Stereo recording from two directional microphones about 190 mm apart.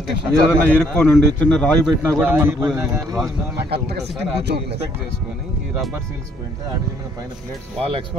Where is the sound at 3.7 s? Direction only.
60° right (ahead or behind).